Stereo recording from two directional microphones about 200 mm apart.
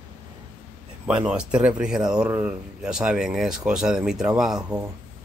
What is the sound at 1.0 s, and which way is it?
Speech, 5° right (ahead or behind).